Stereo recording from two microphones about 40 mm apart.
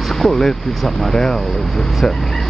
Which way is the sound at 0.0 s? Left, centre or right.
Centre.